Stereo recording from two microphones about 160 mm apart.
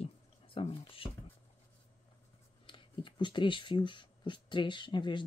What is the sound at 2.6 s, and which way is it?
Speech, 30° left (ahead or behind).